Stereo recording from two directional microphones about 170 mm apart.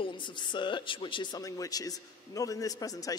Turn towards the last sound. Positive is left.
turn(degrees=20)  # may be behind; listen again after turning